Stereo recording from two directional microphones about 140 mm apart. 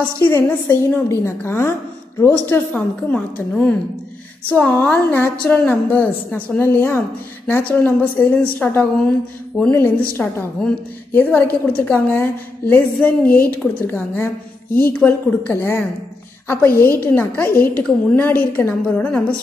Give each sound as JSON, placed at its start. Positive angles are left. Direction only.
{"t": 0.2, "sound": "a woman's voice", "side_deg": 20}